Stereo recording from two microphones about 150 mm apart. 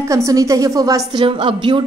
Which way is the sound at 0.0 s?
20° right (ahead or behind).